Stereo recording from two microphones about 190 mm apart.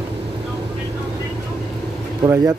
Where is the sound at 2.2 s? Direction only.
20° right (ahead or behind).